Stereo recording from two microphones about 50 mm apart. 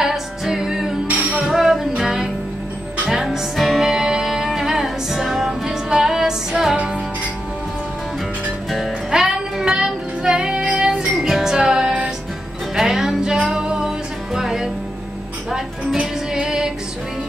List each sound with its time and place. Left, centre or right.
0.0 s music: centre
1.0 s music: right
1.5 s music: centre
3.9 s music: centre
8.6 s music: centre
11.1 s music: centre
16.3 s music: centre